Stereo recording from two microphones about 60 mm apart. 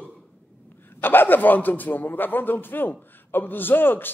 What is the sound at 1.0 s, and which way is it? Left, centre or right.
A man's voice, left.